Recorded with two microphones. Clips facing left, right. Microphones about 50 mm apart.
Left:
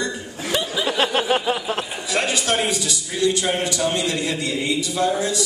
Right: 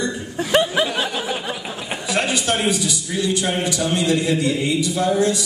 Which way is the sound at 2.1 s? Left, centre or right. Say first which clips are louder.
Right 1 dB; right.